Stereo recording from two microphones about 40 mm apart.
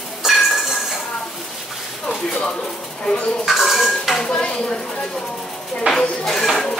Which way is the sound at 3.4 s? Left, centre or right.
Centre.